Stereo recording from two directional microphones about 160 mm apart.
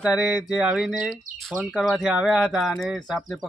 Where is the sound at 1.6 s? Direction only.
5° left (ahead or behind).